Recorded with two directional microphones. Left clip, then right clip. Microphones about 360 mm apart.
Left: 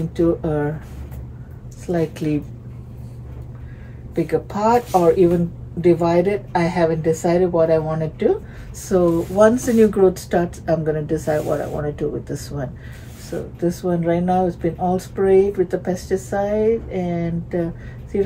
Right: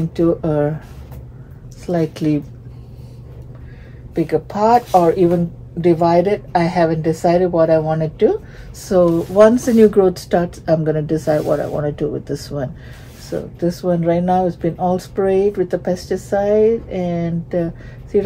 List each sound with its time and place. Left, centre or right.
0.1 s speech: right
1.9 s speech: right
4.1 s speech: right